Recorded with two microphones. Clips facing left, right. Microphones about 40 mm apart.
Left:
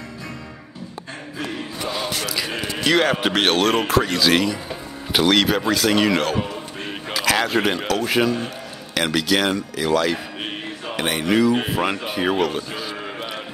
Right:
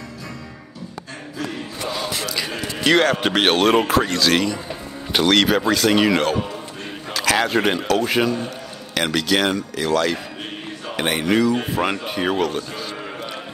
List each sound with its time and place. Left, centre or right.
1.9 s a sound: centre
2.2 s speech: centre
2.5 s a man's voice: centre
2.8 s speech: centre